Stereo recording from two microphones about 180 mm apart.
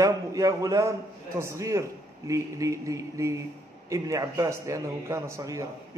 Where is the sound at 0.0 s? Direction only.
20° right (ahead or behind).